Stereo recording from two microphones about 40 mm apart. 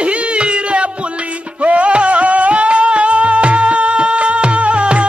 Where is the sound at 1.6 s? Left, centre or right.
Right.